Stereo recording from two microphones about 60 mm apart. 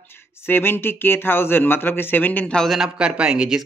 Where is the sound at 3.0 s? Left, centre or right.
Centre.